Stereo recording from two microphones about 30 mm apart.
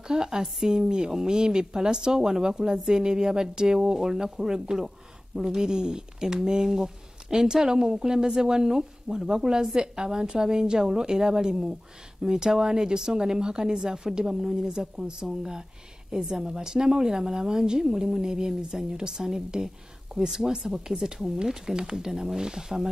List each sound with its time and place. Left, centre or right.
0.1 s speech: centre